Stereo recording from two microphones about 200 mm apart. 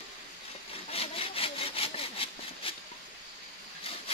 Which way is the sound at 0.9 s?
30° left (ahead or behind).